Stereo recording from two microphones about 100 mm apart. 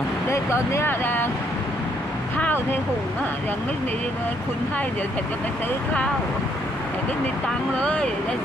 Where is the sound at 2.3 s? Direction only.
20° left (ahead or behind).